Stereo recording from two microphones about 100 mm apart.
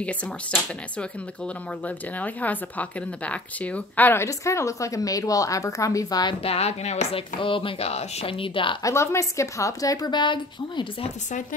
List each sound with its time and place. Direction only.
0.0 s speech: 10° left (ahead or behind); by 6.3 s 40° left (ahead or behind)
6.4 s speech: 85° left; by 8.7 s 60° left (ahead or behind)
8.8 s speech: 30° left (ahead or behind); by 11.1 s 55° left (ahead or behind)